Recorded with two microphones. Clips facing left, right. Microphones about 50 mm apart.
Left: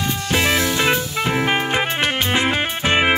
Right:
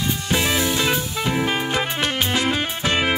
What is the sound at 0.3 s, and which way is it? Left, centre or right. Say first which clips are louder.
Music: left 3 dB; left.